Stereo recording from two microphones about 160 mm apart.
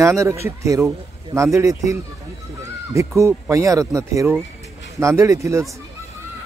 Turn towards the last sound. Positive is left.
turn(degrees=-20)  # may be behind; listen again after turning